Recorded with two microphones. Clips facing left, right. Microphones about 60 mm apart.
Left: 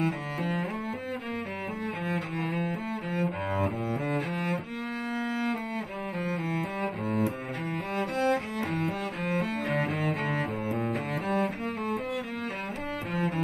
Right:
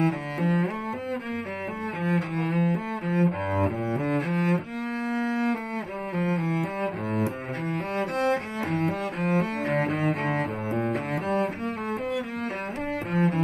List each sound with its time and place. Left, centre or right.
0.0 s cello: right
2.0 s cello: right
5.1 s music: right
6.1 s cello: right
13.1 s cello: right